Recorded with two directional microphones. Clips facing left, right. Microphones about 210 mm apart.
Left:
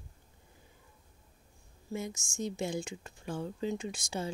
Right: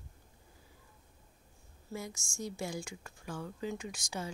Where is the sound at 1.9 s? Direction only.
20° left (ahead or behind).